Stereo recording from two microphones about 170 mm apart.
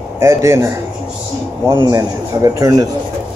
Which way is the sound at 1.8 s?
20° right (ahead or behind).